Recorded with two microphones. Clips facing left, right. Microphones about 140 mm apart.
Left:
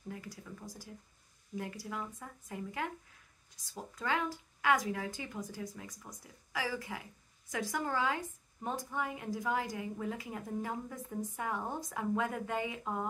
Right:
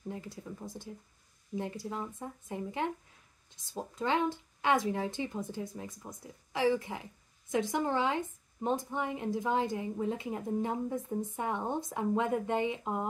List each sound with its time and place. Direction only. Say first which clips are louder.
0.1 s a woman's voice: right 3 dB; 25° right (ahead or behind)